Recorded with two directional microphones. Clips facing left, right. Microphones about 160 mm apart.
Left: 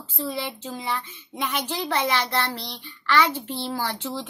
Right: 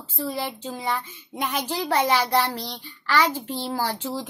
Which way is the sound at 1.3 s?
10° right (ahead or behind).